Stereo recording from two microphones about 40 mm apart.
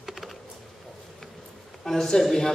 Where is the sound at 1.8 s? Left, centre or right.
Centre.